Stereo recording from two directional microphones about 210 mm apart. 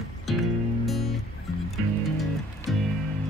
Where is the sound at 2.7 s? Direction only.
Centre (ahead or behind).